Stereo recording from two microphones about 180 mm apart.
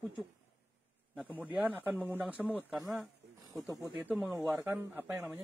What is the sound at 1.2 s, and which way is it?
Speech, 10° right (ahead or behind).